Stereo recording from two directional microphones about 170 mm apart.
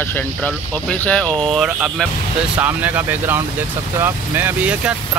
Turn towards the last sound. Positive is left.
turn(degrees=-10)  # may be behind; listen again after turning